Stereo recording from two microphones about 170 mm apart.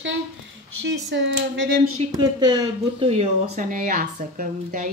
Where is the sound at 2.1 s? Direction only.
25° right (ahead or behind).